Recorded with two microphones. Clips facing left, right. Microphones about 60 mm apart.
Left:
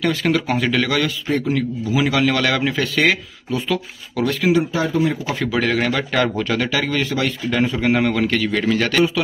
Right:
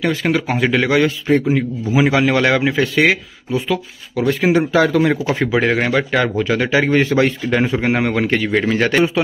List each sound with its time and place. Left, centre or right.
0.0 s a man's voice: centre
3.1 s speech: centre
4.3 s speech: right
4.7 s a man's voice: right
5.5 s a man's voice: right
6.1 s speech: centre
6.8 s a man's voice: right